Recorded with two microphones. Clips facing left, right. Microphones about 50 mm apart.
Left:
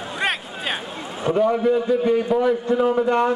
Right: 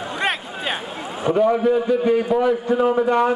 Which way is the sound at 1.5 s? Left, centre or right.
Right.